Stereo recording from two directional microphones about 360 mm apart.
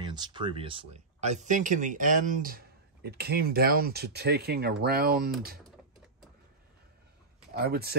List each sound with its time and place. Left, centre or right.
0.0 s speech: centre
7.5 s speech: right